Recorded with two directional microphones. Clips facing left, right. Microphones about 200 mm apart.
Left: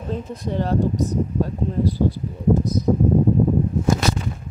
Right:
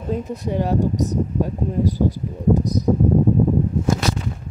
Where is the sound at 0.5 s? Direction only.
10° right (ahead or behind).